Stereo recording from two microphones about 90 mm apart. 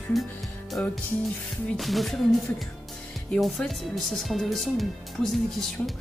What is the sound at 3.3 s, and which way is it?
Speech, 5° left (ahead or behind).